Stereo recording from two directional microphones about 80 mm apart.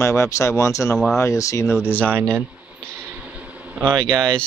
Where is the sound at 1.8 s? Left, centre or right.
Left.